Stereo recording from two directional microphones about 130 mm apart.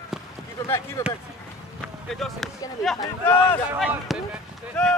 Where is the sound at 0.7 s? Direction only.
20° left (ahead or behind).